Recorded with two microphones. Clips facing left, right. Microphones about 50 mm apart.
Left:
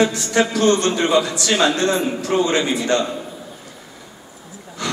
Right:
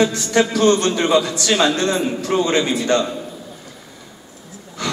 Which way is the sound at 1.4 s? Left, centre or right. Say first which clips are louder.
Even; centre.